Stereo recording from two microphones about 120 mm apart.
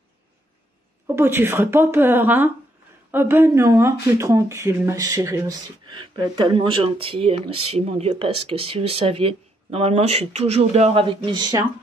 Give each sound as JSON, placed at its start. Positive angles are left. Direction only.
{"t": 1.0, "sound": "speech", "side_deg": -20}
{"t": 11.1, "sound": "speech", "side_deg": -40}